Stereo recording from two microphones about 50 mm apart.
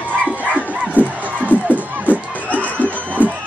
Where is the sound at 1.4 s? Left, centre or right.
Left.